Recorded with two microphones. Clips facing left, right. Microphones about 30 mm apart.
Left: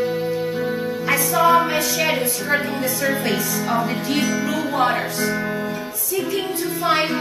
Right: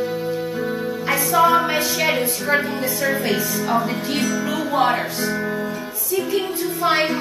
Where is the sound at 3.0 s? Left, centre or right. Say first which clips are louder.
Right 1 dB; centre.